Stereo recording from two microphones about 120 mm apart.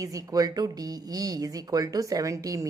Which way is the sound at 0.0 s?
30° right (ahead or behind).